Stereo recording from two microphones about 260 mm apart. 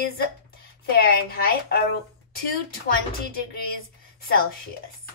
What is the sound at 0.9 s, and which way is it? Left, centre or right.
A woman's voice, left.